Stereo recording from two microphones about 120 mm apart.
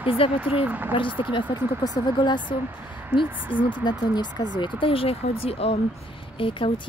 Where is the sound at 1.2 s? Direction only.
45° left (ahead or behind).